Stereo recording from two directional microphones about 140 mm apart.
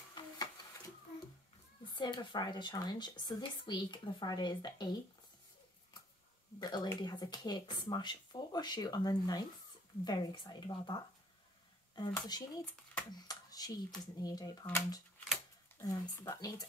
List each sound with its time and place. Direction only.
0.1 s a sound: 25° left (ahead or behind)
1.9 s speech: 35° left (ahead or behind)
6.6 s speech: 30° left (ahead or behind)
12.1 s speech: 25° left (ahead or behind)
13.1 s a sound: 25° left (ahead or behind)
14.2 s speech: 25° left (ahead or behind)